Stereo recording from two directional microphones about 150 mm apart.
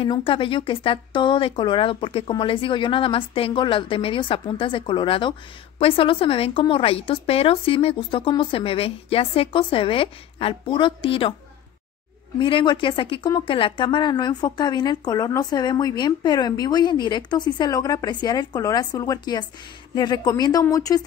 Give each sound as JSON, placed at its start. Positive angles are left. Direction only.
{"t": 0.0, "sound": "a woman's voice", "side_deg": 35}
{"t": 12.4, "sound": "a woman's voice", "side_deg": 35}